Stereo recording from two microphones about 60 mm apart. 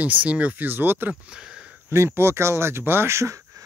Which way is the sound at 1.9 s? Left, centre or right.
Right.